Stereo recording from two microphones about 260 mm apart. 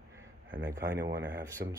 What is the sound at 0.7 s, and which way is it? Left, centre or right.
Speech, centre.